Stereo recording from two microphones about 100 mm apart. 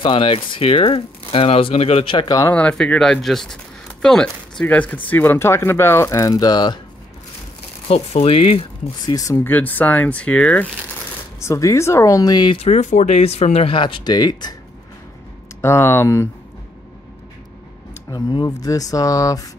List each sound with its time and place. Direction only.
0.0 s speech: 60° left (ahead or behind)
2.1 s speech: 40° left (ahead or behind)
2.5 s speech: 10° left (ahead or behind); by 6.8 s 45° left (ahead or behind)
7.9 s speech: 75° left (ahead or behind)
9.0 s speech: 35° left (ahead or behind)
9.4 s speech: 20° left (ahead or behind)
11.3 s speech: 30° left (ahead or behind)
12.5 s speech: 90° left
13.7 s speech: 55° left (ahead or behind)
15.6 s speech: 25° left (ahead or behind)
18.1 s speech: 40° left (ahead or behind)